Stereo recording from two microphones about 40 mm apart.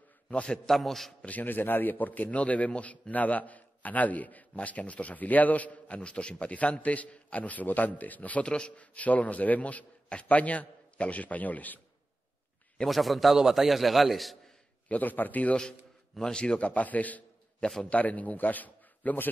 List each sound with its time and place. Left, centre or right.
0.3 s a man's voice: left
0.7 s a man's voice: centre
1.4 s a man's voice: left
12.8 s a man's voice: centre
14.9 s a man's voice: left
16.3 s a man's voice: left
16.5 s a man's voice: left